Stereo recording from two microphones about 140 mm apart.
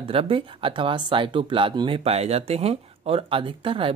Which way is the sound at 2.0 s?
50° right (ahead or behind).